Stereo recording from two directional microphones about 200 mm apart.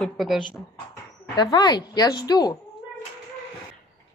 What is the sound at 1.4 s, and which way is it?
Speech, 20° left (ahead or behind).